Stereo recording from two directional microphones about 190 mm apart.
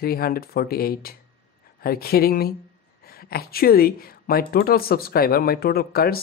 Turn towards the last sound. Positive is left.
turn(degrees=55)  # may be behind; listen again after turning